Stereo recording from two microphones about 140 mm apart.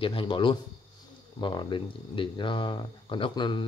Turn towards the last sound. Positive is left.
turn(degrees=35)  # may be behind; listen again after turning